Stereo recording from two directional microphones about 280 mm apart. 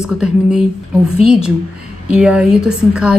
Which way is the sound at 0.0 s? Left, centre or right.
Centre.